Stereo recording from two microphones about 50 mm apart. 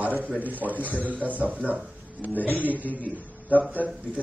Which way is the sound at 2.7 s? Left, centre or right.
Right.